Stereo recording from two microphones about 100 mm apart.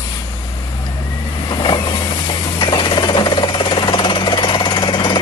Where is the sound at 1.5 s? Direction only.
50° left (ahead or behind).